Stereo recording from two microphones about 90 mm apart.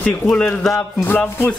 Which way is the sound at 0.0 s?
10° left (ahead or behind).